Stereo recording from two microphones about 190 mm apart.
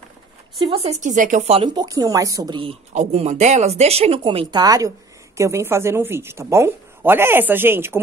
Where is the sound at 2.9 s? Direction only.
35° right (ahead or behind).